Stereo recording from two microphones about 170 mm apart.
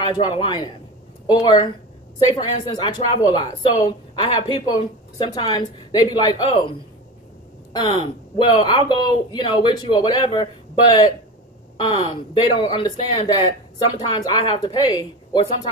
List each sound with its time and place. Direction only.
0.2 s speech: 30° left (ahead or behind)
7.7 s speech: 30° left (ahead or behind)